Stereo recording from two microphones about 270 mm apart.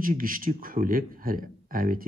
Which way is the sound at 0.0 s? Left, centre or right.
Right.